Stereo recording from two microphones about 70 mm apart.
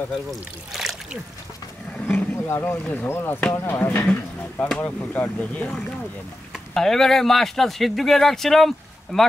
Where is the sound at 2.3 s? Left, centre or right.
Left.